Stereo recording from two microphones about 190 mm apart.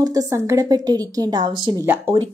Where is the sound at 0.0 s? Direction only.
15° right (ahead or behind).